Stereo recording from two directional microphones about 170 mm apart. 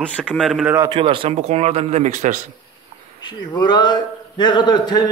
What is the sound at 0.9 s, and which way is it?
Speech, 30° right (ahead or behind).